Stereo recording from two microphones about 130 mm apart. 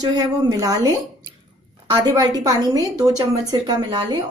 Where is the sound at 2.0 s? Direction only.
30° right (ahead or behind).